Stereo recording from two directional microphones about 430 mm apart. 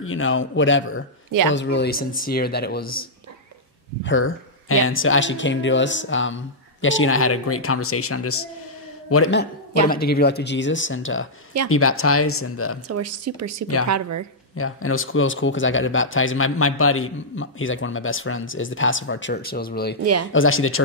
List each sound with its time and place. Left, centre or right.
0.0 s speech: left
4.0 s speech: left
12.8 s speech: right
14.6 s speech: left
20.0 s speech: right
20.3 s speech: left